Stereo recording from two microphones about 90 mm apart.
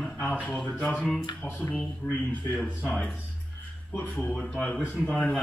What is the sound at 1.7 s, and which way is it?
Speech, 15° left (ahead or behind).